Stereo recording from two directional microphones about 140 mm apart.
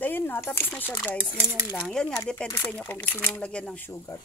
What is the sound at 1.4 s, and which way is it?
Speech, 15° right (ahead or behind).